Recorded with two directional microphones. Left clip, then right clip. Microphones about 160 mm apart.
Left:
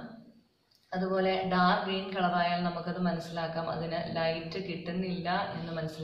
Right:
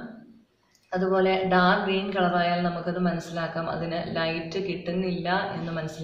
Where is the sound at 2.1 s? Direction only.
20° right (ahead or behind).